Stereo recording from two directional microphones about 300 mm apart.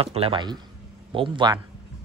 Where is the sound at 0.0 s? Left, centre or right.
Centre.